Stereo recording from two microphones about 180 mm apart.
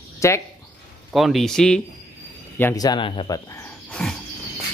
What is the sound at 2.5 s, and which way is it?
Speech, 15° left (ahead or behind).